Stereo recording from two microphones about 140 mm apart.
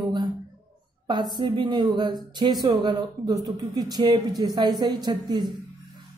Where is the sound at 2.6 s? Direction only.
30° right (ahead or behind).